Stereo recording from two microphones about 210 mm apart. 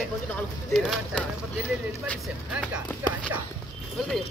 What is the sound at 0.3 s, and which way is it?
Speech, 5° left (ahead or behind).